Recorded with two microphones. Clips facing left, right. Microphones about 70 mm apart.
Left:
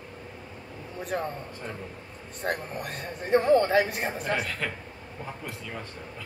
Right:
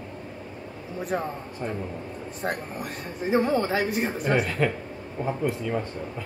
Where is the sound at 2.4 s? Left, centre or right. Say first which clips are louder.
Even; centre.